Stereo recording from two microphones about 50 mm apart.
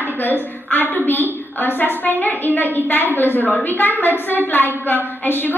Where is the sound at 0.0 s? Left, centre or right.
Left.